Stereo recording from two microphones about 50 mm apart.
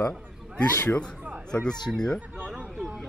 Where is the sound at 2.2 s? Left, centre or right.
Right.